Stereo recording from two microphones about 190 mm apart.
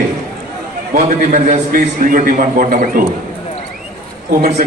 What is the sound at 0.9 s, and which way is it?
A man's voice, 40° right (ahead or behind).